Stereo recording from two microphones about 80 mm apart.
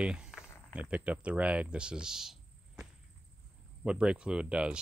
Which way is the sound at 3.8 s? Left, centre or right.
Centre.